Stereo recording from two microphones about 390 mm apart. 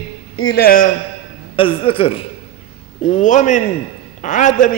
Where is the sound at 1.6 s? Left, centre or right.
Centre.